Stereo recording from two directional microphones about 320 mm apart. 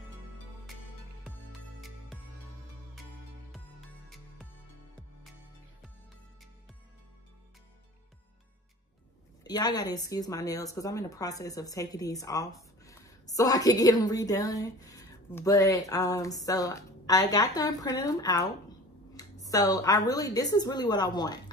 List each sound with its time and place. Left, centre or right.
1.2 s music: centre
9.4 s a woman's voice: centre
19.4 s a woman's voice: centre